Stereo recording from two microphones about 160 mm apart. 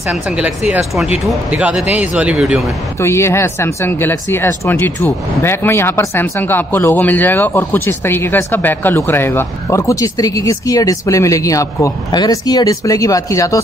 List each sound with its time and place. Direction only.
0.1 s speech: 5° right (ahead or behind)
3.0 s speech: 15° left (ahead or behind)